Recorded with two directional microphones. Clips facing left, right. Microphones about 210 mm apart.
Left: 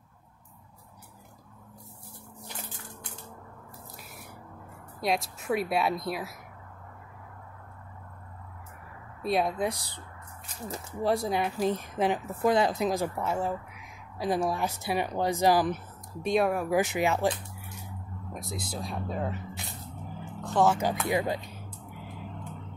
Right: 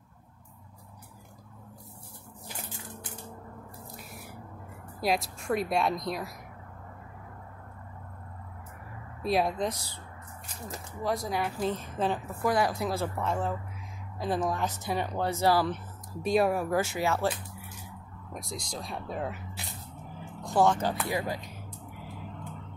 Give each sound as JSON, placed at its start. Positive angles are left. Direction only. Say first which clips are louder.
{"t": 5.0, "sound": "speech", "louder": "even", "side_deg": 0}
{"t": 9.2, "sound": "speech", "louder": "even", "side_deg": 0}
{"t": 9.7, "sound": "speech", "louder": "left 2 dB", "side_deg": 15}
{"t": 10.7, "sound": "speech", "louder": "left 4 dB", "side_deg": 30}
{"t": 16.2, "sound": "speech", "louder": "even", "side_deg": 0}
{"t": 16.7, "sound": "speech", "louder": "left 2 dB", "side_deg": 15}
{"t": 17.6, "sound": "a sound", "louder": "left 1 dB", "side_deg": 0}
{"t": 18.3, "sound": "speech", "louder": "left 1 dB", "side_deg": 0}
{"t": 20.3, "sound": "music", "louder": "even", "side_deg": -10}
{"t": 20.6, "sound": "speech", "louder": "left 2 dB", "side_deg": 10}